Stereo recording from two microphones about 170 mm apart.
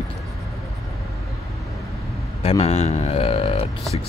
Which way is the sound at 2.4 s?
35° left (ahead or behind).